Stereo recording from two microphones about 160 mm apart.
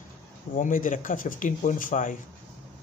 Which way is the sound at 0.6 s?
55° left (ahead or behind).